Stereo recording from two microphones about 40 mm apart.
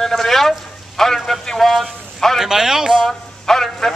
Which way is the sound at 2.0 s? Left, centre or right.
Centre.